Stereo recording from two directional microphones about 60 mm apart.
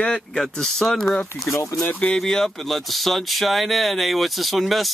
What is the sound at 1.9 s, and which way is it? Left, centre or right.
Speech, left.